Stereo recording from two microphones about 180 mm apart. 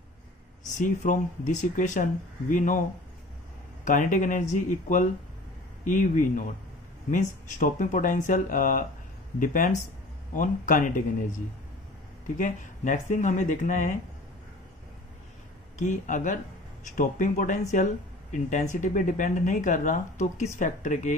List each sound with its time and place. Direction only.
0.7 s speech: 45° left (ahead or behind)
3.8 s speech: 45° left (ahead or behind)
12.4 s speech: 45° left (ahead or behind)
15.8 s speech: 45° left (ahead or behind)